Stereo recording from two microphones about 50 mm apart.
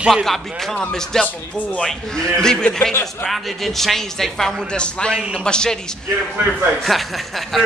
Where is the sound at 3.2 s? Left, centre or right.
Centre.